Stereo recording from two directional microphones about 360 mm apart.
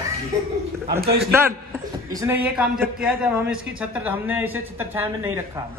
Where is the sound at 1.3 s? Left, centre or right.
Centre.